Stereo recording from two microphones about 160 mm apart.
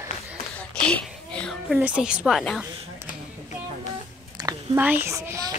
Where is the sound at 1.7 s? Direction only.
10° right (ahead or behind).